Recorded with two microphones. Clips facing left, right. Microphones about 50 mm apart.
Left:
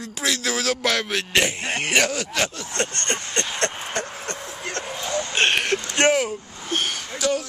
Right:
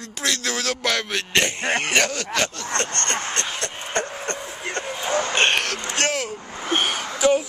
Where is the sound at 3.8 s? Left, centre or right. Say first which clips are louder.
Right 2 dB; centre.